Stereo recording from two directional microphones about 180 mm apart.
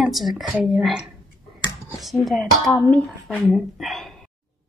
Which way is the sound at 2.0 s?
Centre (ahead or behind).